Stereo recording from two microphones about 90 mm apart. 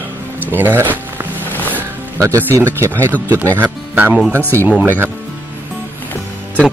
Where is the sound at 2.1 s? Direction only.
30° right (ahead or behind).